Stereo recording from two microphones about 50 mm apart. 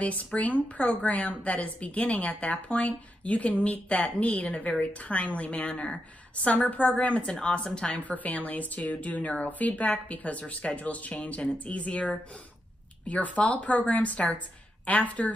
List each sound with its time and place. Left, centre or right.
0.0 s a woman's voice: left
8.0 s a woman's voice: left